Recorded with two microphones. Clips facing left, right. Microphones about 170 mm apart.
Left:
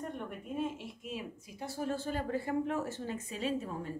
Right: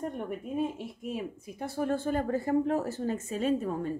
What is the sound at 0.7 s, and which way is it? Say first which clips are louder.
Speech: right 6 dB; 55° right (ahead or behind).